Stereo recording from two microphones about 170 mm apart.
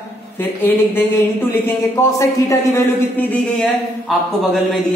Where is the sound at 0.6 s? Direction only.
10° left (ahead or behind).